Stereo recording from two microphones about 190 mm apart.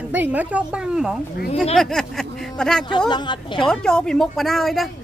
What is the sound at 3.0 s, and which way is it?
Speech, 25° left (ahead or behind).